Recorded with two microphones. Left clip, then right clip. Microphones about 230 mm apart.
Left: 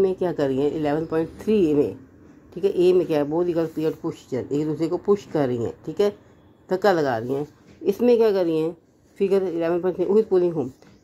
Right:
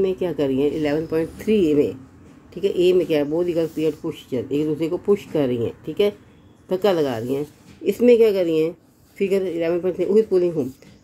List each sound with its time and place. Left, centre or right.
0.0 s speech: centre